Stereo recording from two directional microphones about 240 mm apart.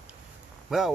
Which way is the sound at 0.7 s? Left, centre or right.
Centre.